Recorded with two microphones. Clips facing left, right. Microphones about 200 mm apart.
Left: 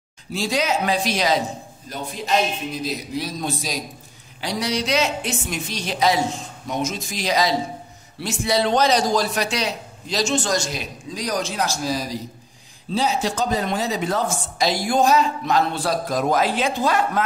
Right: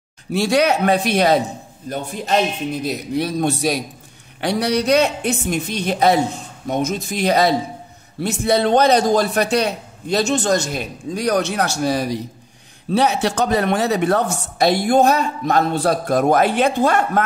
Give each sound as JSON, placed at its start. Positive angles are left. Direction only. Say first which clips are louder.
{"t": 0.3, "sound": "speech", "louder": "right 6 dB", "side_deg": -65}
{"t": 2.7, "sound": "speech", "louder": "right 5 dB", "side_deg": -60}